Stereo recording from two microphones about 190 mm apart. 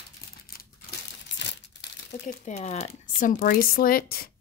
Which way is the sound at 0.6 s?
60° left (ahead or behind).